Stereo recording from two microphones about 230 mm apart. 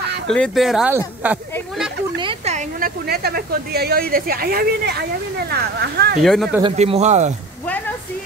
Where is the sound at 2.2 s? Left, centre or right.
Right.